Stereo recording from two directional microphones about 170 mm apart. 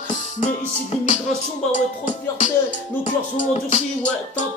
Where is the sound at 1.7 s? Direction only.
45° left (ahead or behind).